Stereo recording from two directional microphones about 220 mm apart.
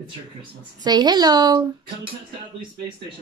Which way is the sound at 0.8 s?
20° right (ahead or behind).